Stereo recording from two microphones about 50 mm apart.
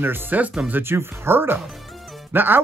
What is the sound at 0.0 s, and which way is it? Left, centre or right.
Speech, right.